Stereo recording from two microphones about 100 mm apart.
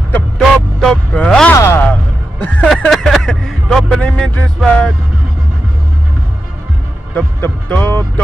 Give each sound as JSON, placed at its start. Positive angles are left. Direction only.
{"t": 0.4, "sound": "music", "side_deg": 5}
{"t": 1.1, "sound": "a sound", "side_deg": 10}
{"t": 1.5, "sound": "a sound", "side_deg": 25}
{"t": 1.9, "sound": "music", "side_deg": 15}
{"t": 2.9, "sound": "vehicle", "side_deg": 5}
{"t": 4.6, "sound": "music", "side_deg": 0}
{"t": 7.2, "sound": "music", "side_deg": 20}